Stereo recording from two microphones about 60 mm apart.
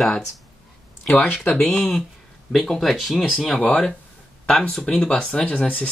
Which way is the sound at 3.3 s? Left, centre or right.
Centre.